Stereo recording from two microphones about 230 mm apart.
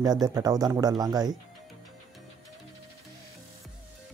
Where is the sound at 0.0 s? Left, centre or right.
Centre.